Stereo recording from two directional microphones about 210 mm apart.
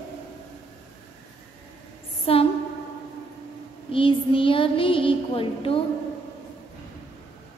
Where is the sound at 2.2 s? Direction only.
25° left (ahead or behind).